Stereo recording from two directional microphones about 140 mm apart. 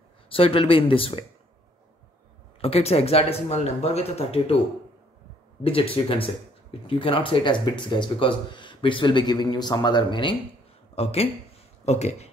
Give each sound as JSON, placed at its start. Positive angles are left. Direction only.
{"t": 0.3, "sound": "speech", "side_deg": 40}
{"t": 2.6, "sound": "speech", "side_deg": 45}
{"t": 5.6, "sound": "speech", "side_deg": 40}
{"t": 11.0, "sound": "speech", "side_deg": 45}